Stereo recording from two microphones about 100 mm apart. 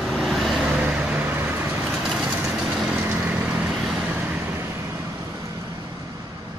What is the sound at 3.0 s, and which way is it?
Vehicle, 15° right (ahead or behind).